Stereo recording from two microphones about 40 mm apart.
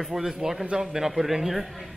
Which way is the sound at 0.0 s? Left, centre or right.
Centre.